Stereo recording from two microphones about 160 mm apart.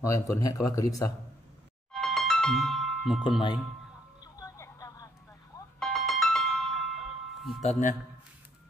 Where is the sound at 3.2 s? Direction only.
30° left (ahead or behind).